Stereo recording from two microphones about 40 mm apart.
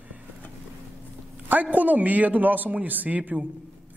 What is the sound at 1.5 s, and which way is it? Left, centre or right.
A man's voice, right.